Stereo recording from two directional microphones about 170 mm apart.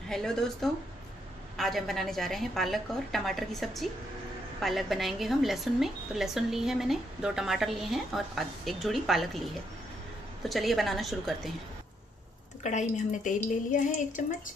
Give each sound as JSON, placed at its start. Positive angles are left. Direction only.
{"t": 0.1, "sound": "a woman's voice", "side_deg": 5}
{"t": 10.5, "sound": "a woman's voice", "side_deg": 0}
{"t": 12.6, "sound": "speech", "side_deg": 45}